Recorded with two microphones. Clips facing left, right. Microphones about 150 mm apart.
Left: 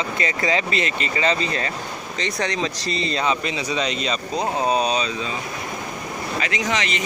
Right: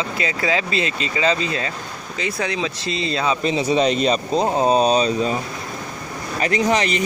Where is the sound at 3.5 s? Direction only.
30° right (ahead or behind).